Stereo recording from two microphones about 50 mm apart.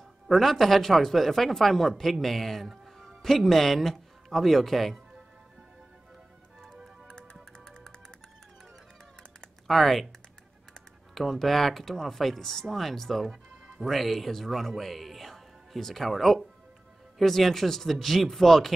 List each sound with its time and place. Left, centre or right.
0.3 s speech: centre
7.5 s music: centre
9.7 s speech: centre
11.1 s speech: centre